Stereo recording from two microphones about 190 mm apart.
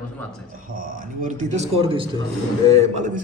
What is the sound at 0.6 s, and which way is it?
A man's voice, 50° right (ahead or behind).